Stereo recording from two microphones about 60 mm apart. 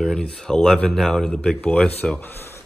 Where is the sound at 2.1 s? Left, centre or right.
Left.